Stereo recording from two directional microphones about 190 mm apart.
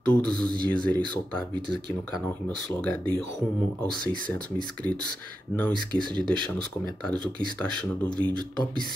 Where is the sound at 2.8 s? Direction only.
5° left (ahead or behind).